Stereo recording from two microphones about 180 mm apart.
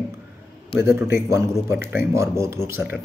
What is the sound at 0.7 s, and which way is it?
Speech, 15° right (ahead or behind).